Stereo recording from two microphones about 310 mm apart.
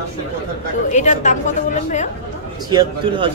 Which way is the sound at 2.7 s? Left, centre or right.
Centre.